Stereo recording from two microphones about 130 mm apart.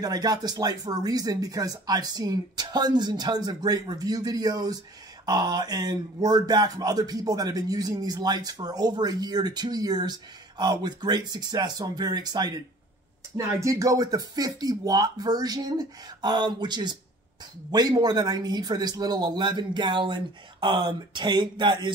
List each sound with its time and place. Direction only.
0.0 s speech: 30° right (ahead or behind)
13.6 s speech: 25° right (ahead or behind)